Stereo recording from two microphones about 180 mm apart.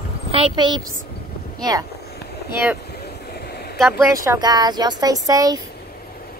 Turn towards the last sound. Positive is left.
turn(degrees=-20)  # may be behind; listen again after turning